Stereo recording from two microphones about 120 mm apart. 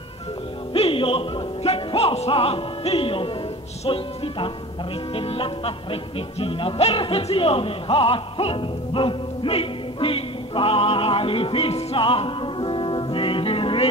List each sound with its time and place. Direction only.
0.7 s speech: 50° left (ahead or behind)
3.8 s music: 50° left (ahead or behind)